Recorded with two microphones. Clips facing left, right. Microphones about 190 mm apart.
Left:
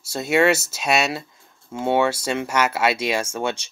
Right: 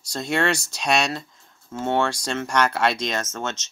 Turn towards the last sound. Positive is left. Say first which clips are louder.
# left 5 dB
turn(degrees=10)  # may be behind; listen again after turning